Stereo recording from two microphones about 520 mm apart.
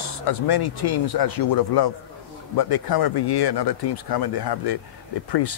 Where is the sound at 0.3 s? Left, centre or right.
Left.